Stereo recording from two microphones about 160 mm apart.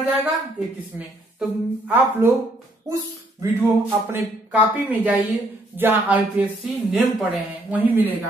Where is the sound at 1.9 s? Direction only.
10° right (ahead or behind).